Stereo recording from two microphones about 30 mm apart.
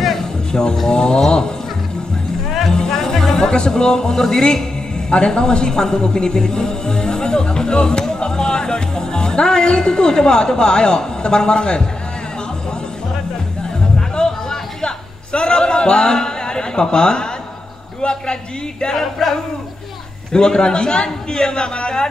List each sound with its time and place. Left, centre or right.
0.2 s a sound: left
0.8 s a woman's voice: left
2.7 s music: left
3.3 s a woman's voice: left
13.9 s music: left
14.8 s a man's voice: left
18.9 s a sound: centre
20.3 s a woman's voice: left